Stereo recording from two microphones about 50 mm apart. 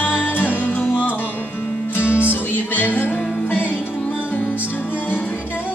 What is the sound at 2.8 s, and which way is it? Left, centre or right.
Music, left.